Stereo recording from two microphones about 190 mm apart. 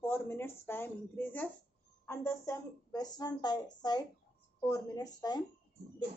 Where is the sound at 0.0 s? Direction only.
10° left (ahead or behind).